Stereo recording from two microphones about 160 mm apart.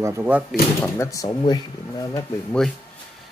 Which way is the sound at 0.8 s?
15° left (ahead or behind).